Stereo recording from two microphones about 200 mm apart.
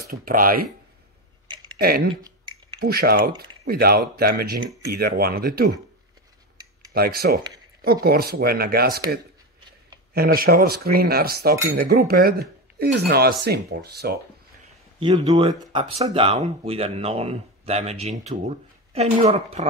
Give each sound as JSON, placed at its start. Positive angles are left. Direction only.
{"t": 0.1, "sound": "speech", "side_deg": -45}
{"t": 1.8, "sound": "speech", "side_deg": -50}
{"t": 6.9, "sound": "speech", "side_deg": -50}
{"t": 10.1, "sound": "speech", "side_deg": -50}
{"t": 15.0, "sound": "speech", "side_deg": -25}